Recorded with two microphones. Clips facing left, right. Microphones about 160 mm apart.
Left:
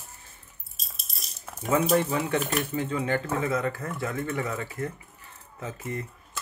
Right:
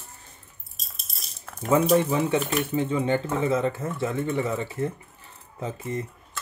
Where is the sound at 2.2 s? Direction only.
Centre (ahead or behind).